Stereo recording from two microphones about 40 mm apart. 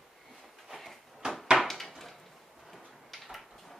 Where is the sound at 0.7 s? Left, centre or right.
Centre.